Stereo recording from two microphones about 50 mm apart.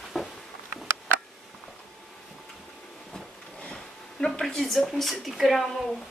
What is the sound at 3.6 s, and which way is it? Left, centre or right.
Sniff, left.